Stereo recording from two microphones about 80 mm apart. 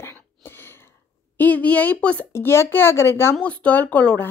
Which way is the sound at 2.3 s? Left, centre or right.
Left.